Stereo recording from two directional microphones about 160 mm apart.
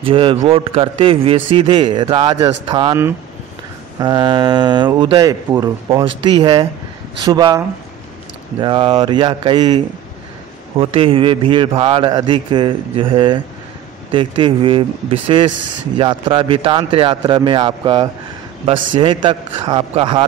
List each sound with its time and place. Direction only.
0.0 s a man's voice: 35° right (ahead or behind)
4.0 s speech: 25° right (ahead or behind)
6.0 s speech: 30° right (ahead or behind)
10.8 s a man's voice: 35° right (ahead or behind)